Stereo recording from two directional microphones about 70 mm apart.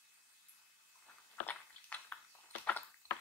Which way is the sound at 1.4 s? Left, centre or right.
Left.